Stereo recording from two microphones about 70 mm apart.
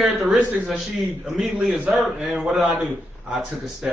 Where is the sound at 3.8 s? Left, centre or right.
Centre.